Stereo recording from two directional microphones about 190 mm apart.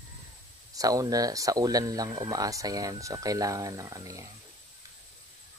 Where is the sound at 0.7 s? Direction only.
20° right (ahead or behind).